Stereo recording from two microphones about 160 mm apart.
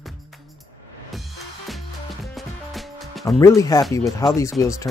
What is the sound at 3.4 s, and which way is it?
Speech, 20° left (ahead or behind).